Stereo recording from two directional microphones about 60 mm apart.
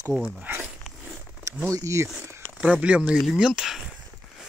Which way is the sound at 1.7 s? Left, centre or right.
Right.